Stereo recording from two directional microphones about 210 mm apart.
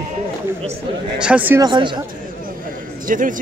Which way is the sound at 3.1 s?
40° right (ahead or behind).